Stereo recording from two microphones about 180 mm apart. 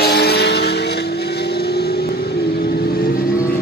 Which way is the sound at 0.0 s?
65° left (ahead or behind).